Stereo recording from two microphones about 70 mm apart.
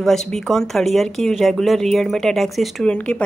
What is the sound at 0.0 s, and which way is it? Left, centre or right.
Speech, centre.